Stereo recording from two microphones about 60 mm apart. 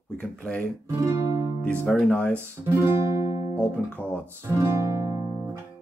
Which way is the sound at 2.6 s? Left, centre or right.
Right.